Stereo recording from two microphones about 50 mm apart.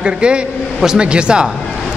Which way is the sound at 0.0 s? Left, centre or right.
Right.